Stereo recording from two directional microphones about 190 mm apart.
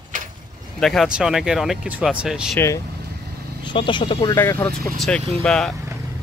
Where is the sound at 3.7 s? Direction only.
25° left (ahead or behind).